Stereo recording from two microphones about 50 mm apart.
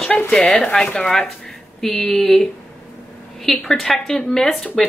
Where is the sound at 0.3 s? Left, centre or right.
Centre.